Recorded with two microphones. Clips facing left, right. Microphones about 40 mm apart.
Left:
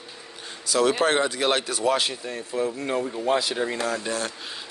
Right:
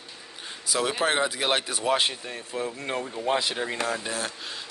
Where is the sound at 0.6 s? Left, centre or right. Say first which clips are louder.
Left 5 dB; centre.